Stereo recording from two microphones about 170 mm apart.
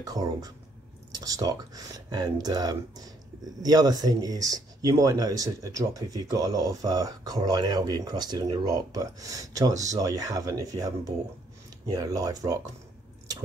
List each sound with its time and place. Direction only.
0.0 s speech: 20° right (ahead or behind)